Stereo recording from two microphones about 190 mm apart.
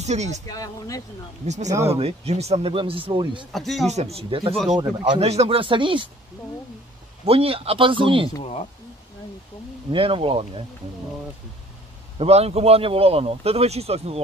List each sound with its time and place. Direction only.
0.0 s speech: 35° right (ahead or behind)
0.5 s speech: 20° left (ahead or behind)
1.7 s speech: 15° right (ahead or behind)
2.0 s speech: 35° right (ahead or behind)
3.5 s speech: centre (ahead or behind)
3.9 s speech: 35° right (ahead or behind)
7.2 s speech: 30° right (ahead or behind)
9.8 s speech: 30° right (ahead or behind)
12.2 s speech: 35° right (ahead or behind)